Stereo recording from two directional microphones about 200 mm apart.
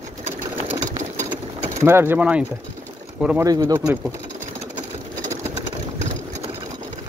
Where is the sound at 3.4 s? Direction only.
20° right (ahead or behind).